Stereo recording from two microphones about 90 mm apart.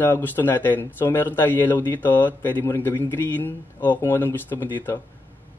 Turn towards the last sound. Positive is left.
turn(degrees=25)  # may be behind; listen again after turning